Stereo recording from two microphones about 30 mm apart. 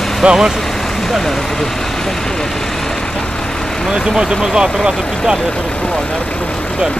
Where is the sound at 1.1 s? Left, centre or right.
Centre.